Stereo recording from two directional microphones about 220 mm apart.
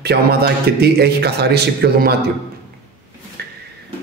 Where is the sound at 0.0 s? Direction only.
45° right (ahead or behind).